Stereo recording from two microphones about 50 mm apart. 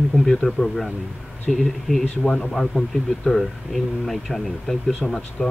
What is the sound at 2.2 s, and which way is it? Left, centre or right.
Speech, centre.